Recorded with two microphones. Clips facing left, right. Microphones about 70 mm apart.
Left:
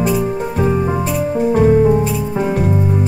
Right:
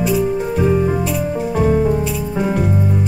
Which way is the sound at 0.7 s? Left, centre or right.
Centre.